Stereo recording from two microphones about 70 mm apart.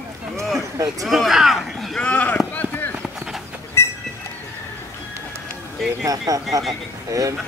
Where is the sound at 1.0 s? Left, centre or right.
Centre.